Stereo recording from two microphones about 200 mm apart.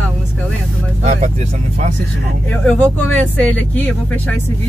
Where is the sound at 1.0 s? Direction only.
35° right (ahead or behind).